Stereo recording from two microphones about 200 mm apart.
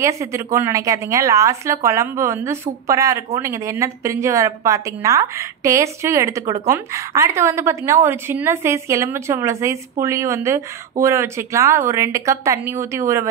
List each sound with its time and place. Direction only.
0.0 s a woman's voice: 15° right (ahead or behind)